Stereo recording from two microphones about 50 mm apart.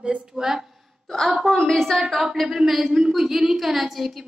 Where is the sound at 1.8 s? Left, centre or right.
Centre.